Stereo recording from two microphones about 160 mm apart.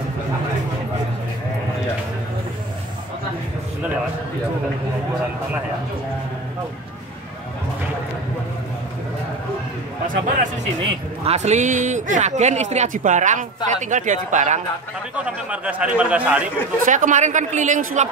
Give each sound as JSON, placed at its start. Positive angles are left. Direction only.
{"t": 10.0, "sound": "speech", "side_deg": -55}
{"t": 11.2, "sound": "speech", "side_deg": -45}
{"t": 15.5, "sound": "speech", "side_deg": -5}
{"t": 16.8, "sound": "speech", "side_deg": -55}